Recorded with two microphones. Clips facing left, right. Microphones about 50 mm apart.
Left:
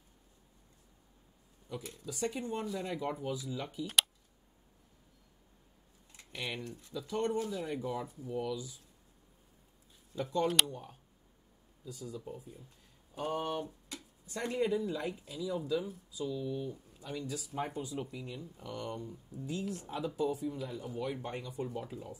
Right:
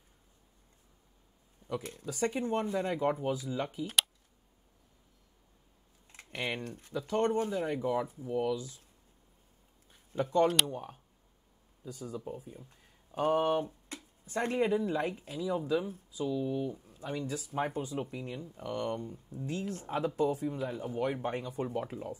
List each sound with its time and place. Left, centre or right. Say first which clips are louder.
1.6 s a sound: right 7 dB; right
2.0 s speech: right 4 dB; right
3.8 s speech: left 2 dB; centre
6.1 s speech: right 4 dB; right
8.3 s speech: right 4 dB; right
10.1 s speech: right 4 dB; right
17.3 s speech: right 4 dB; right